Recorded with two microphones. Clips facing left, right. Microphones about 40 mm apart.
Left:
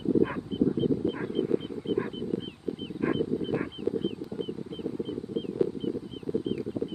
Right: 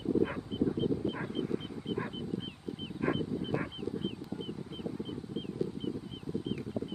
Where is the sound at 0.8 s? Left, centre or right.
Centre.